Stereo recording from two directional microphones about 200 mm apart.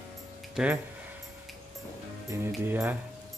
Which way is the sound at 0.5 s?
5° right (ahead or behind).